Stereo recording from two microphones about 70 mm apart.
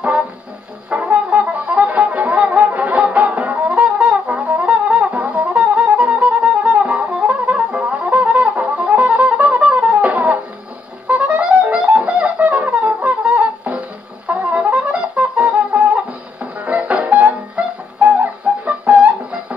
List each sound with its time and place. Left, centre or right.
0.8 s brass instrument: right
16.5 s music: right